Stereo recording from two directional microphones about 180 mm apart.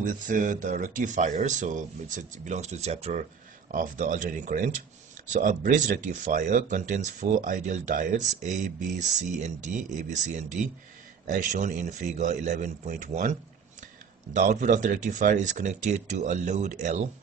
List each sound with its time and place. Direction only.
0.0 s speech: 45° right (ahead or behind)